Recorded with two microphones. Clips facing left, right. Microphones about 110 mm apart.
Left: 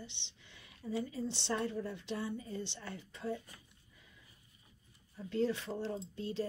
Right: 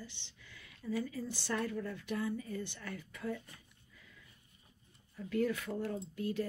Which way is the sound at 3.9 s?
20° left (ahead or behind).